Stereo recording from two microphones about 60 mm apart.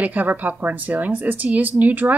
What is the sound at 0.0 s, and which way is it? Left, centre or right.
Speech, right.